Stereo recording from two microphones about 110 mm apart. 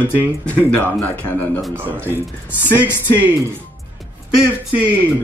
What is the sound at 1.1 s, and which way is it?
Speech, 15° left (ahead or behind).